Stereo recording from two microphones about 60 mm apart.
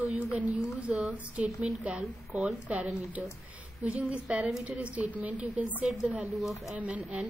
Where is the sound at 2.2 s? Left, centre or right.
Centre.